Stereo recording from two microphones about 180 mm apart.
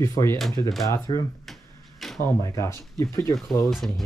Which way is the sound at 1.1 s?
30° left (ahead or behind).